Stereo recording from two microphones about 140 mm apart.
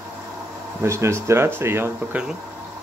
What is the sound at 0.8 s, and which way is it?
Speech, 20° right (ahead or behind).